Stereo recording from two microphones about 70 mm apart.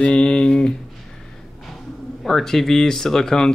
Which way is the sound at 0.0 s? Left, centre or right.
Centre.